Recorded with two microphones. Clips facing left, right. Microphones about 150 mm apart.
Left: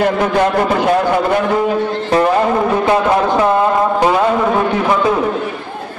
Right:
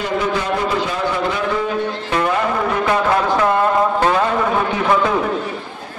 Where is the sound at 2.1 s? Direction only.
35° left (ahead or behind); by 4.9 s 10° left (ahead or behind).